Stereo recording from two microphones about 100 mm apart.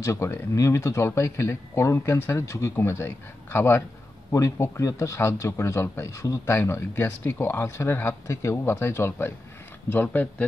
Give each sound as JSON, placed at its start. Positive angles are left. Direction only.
{"t": 0.0, "sound": "speech", "side_deg": 30}